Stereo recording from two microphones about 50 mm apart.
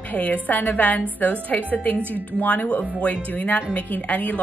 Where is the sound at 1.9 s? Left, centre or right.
Right.